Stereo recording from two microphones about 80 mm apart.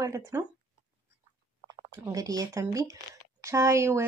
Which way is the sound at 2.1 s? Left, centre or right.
Right.